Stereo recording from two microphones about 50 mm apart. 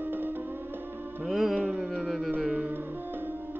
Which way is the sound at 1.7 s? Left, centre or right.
Centre.